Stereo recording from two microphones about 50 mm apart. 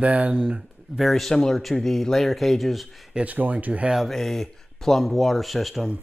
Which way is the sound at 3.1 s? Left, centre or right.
Right.